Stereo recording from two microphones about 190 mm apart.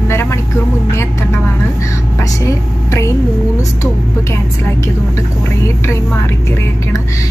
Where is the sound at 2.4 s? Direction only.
15° left (ahead or behind).